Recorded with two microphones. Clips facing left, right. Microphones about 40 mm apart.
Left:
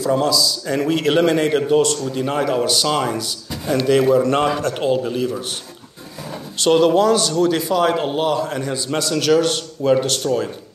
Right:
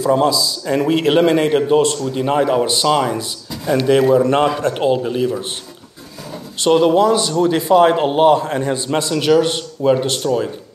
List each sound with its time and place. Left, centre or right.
0.2 s a man's voice: right
6.8 s a man's voice: centre
9.1 s speech: centre